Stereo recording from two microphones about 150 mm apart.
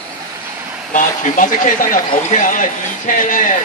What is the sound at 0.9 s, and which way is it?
A man's voice, 60° left (ahead or behind).